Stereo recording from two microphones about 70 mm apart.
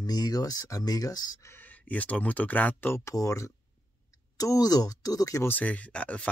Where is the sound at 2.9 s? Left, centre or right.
Left.